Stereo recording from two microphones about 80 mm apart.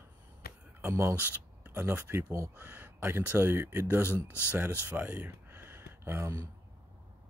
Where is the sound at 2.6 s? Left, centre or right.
Right.